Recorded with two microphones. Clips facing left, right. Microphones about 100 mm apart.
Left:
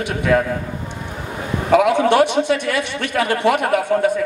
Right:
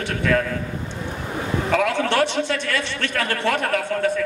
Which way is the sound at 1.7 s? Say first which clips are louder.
Left 8 dB; 15° left (ahead or behind).